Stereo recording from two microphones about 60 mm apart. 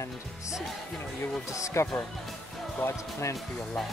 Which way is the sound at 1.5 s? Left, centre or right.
Left.